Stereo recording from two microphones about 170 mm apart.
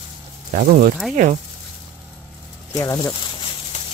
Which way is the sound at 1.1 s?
45° right (ahead or behind).